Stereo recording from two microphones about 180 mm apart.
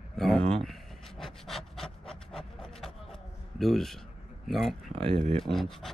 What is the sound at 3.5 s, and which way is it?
A man's voice, centre (ahead or behind).